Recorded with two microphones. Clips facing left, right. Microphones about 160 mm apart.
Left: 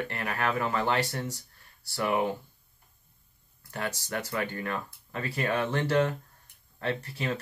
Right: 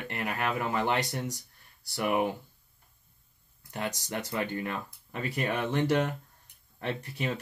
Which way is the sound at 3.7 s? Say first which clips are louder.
Left 1 dB; 20° right (ahead or behind).